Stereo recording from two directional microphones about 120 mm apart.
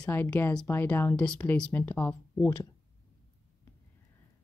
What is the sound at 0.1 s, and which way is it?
Speech, 20° left (ahead or behind).